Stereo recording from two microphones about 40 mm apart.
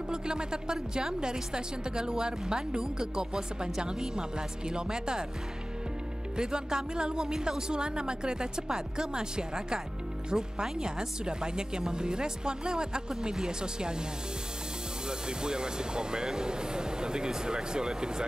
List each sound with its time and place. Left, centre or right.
0.1 s a woman's voice: right
6.3 s a woman's voice: centre
15.0 s a woman's voice: centre